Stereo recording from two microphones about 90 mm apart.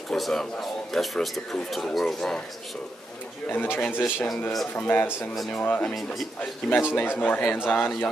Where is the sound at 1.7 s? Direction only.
Centre (ahead or behind).